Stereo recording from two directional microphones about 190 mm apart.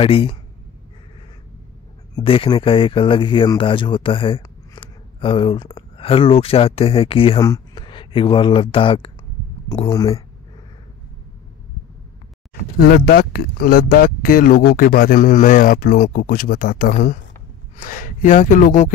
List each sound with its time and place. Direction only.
0.0 s speech: 30° left (ahead or behind)
2.1 s speech: 30° left (ahead or behind)
12.7 s a man's voice: 50° left (ahead or behind)